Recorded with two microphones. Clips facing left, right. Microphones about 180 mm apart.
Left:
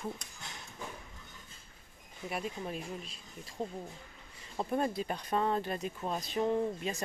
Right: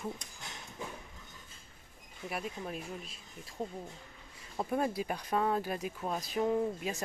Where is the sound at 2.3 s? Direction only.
Centre (ahead or behind).